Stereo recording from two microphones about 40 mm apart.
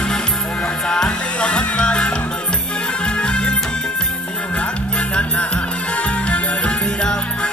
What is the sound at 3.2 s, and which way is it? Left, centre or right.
Music, left.